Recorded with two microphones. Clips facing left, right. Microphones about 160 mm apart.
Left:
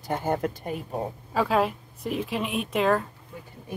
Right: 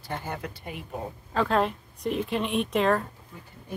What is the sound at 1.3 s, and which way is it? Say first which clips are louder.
Speech: left 1 dB; 5° left (ahead or behind).